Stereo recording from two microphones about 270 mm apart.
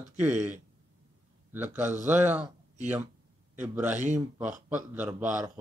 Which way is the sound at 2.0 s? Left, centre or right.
Centre.